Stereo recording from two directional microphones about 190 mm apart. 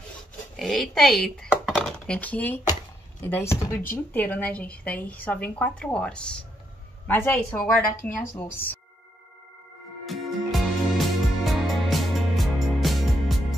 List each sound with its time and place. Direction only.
0.6 s a woman's voice: centre (ahead or behind)
10.0 s music: centre (ahead or behind)